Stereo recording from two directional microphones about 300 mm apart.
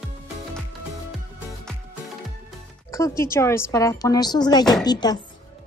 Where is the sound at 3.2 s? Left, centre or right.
Centre.